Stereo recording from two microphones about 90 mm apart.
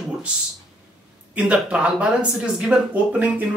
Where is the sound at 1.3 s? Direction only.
10° right (ahead or behind).